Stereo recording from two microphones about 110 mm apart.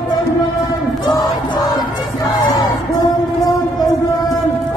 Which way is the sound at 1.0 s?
40° left (ahead or behind).